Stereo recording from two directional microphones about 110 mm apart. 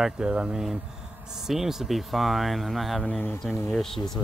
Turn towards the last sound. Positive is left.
turn(degrees=5)  # may be behind; listen again after turning